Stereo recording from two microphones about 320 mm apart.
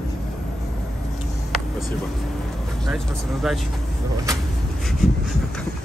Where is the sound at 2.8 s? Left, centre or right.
Centre.